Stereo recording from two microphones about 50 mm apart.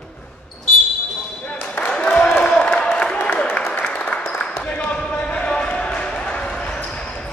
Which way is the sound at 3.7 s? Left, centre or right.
Left.